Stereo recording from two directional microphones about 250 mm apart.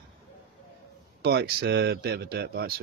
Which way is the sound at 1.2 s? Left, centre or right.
Right.